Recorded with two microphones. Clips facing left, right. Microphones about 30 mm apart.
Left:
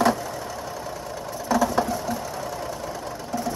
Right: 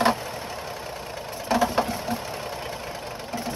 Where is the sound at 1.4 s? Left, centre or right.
Right.